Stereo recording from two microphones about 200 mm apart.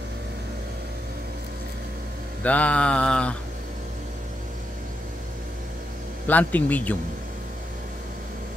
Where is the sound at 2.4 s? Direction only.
5° left (ahead or behind).